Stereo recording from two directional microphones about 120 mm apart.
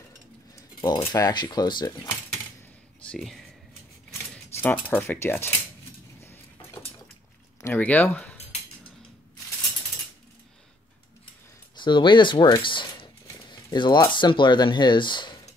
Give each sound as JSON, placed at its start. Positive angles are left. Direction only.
{"t": 1.0, "sound": "speech", "side_deg": 30}
{"t": 3.1, "sound": "speech", "side_deg": 5}
{"t": 4.1, "sound": "keys jangling", "side_deg": 15}
{"t": 6.2, "sound": "a sound", "side_deg": 20}
{"t": 7.6, "sound": "speech", "side_deg": 15}
{"t": 11.7, "sound": "speech", "side_deg": 40}